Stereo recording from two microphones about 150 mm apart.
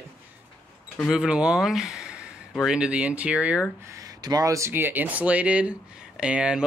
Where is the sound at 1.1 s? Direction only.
5° right (ahead or behind).